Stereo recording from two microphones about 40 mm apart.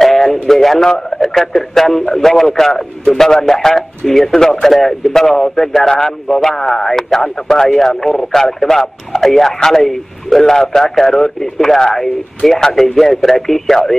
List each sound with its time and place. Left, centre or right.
0.0 s a sound: centre
0.9 s radio: centre
1.3 s speech: centre